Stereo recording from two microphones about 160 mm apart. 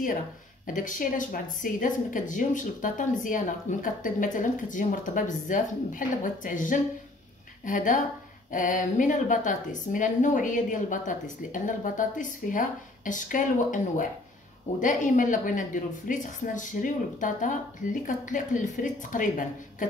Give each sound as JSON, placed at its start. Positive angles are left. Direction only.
{"t": 0.7, "sound": "a woman's voice", "side_deg": 55}